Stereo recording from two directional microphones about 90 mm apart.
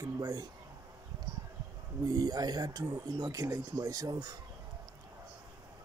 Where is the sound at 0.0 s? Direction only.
40° right (ahead or behind).